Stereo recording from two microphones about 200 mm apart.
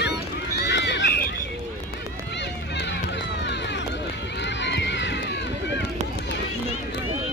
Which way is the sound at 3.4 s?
60° left (ahead or behind).